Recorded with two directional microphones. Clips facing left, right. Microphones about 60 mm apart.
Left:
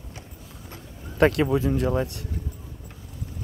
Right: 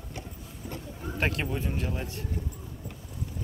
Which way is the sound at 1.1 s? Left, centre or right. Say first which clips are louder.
Left 11 dB; left.